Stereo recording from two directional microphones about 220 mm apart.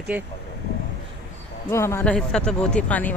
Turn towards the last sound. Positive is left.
turn(degrees=5)  # may be behind; listen again after turning